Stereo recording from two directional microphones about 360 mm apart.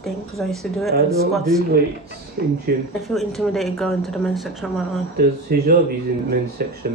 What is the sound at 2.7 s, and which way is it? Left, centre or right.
Speech, right.